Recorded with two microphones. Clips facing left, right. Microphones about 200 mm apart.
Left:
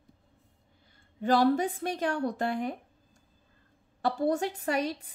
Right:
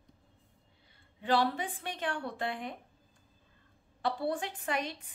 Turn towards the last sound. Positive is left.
turn(degrees=40)  # may be behind; listen again after turning